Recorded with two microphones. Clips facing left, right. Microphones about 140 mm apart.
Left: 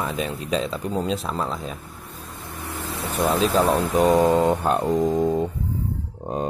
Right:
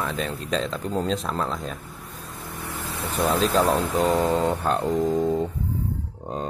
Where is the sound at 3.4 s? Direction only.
10° left (ahead or behind).